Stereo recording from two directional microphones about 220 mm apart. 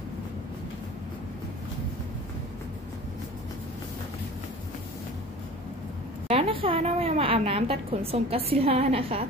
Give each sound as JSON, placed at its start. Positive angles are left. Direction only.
{"t": 6.2, "sound": "a woman's voice", "side_deg": -25}